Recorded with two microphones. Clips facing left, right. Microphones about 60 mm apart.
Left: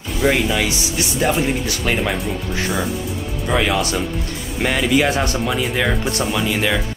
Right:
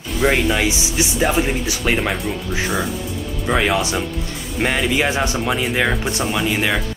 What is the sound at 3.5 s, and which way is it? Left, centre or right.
Speech, centre.